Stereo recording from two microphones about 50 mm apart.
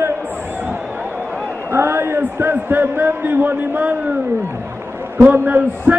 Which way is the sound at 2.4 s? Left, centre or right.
Right.